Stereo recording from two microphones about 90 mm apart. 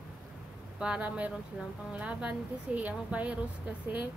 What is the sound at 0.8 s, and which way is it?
Speech, 15° right (ahead or behind).